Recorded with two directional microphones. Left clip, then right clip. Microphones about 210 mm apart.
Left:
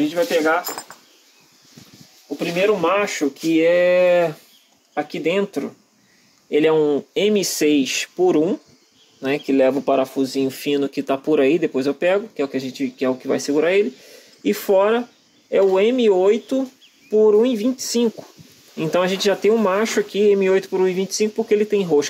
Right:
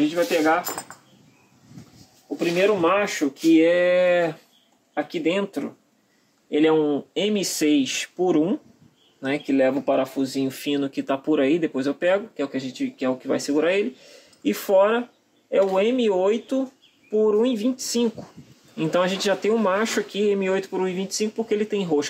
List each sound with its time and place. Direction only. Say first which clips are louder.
0.0 s speech: left 2 dB; 15° left (ahead or behind)
0.9 s a sound: left 2 dB; 10° right (ahead or behind)
2.3 s speech: left 2 dB; 15° left (ahead or behind)